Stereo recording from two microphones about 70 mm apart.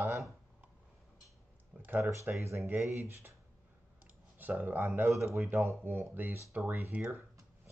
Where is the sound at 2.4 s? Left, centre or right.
Right.